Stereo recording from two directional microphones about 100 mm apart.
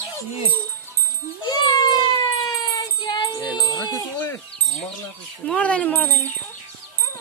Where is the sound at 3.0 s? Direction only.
50° left (ahead or behind).